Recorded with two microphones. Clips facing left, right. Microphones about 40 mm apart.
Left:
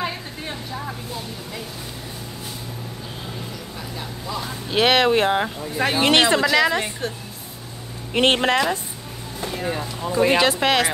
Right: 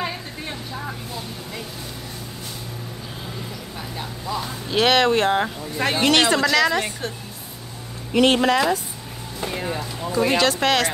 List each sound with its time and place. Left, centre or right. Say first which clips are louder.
0.0 s vehicle: left 1 dB; centre
4.3 s speech: right 1 dB; centre
8.1 s speech: right 1 dB; left
9.4 s speech: right 1 dB; centre
9.7 s speech: left 1 dB; centre